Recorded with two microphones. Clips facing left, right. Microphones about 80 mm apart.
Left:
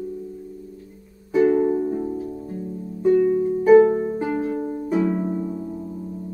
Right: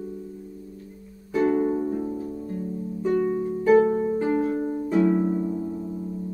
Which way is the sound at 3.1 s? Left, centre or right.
Centre.